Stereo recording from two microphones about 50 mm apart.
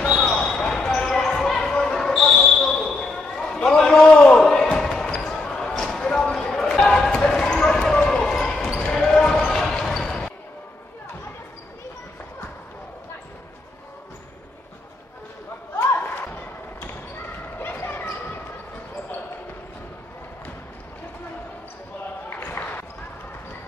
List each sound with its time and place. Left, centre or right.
0.3 s basketball bounce: centre
3.3 s a sound: centre
4.2 s basketball bounce: centre
15.7 s a sound: left
17.6 s basketball bounce: left
22.3 s basketball bounce: left